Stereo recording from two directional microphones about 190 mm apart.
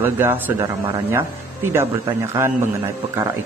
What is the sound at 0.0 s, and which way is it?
A man's voice, 10° right (ahead or behind).